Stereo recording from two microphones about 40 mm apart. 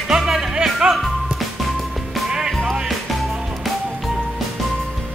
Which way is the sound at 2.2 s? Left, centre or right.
Centre.